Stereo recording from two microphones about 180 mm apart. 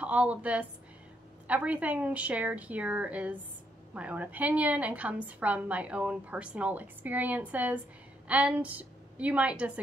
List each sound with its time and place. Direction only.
0.0 s a woman's voice: 5° right (ahead or behind)